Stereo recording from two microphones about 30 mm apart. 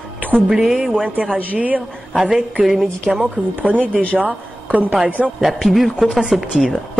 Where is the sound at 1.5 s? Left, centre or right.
Right.